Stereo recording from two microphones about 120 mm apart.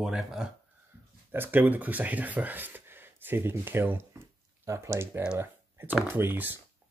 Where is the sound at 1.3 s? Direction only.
15° right (ahead or behind).